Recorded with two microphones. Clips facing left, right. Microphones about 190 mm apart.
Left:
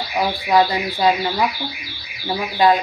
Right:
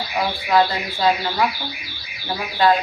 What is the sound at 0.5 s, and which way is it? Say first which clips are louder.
Speech: left 1 dB; 15° left (ahead or behind).